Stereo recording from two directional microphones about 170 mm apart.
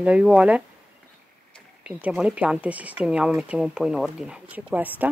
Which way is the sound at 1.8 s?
5° right (ahead or behind).